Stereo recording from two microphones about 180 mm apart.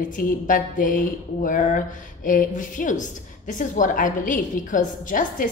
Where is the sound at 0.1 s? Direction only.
50° left (ahead or behind).